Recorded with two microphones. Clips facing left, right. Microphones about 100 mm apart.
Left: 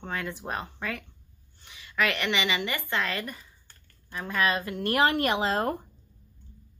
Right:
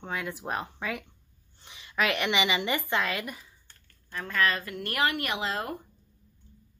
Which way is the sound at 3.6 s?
5° left (ahead or behind).